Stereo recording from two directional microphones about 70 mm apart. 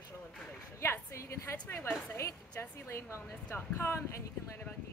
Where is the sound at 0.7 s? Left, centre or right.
Left.